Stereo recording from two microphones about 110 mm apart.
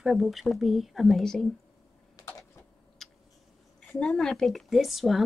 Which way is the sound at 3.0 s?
5° left (ahead or behind).